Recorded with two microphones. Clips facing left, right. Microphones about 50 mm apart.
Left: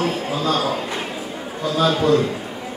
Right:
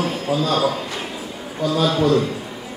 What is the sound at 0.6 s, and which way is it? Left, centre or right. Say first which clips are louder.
Speech: right 1 dB; left.